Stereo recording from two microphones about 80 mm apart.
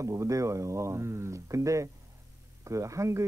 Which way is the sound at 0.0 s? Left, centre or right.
Right.